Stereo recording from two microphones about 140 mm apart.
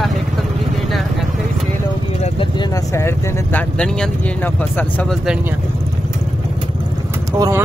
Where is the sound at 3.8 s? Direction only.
10° left (ahead or behind).